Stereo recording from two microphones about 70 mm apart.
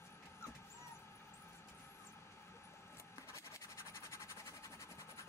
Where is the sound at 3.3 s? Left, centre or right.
Left.